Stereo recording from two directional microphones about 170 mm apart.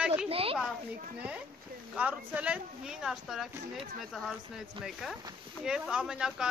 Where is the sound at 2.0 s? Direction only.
10° right (ahead or behind).